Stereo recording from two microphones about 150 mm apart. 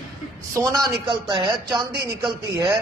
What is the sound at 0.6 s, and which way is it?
Speech, 20° right (ahead or behind).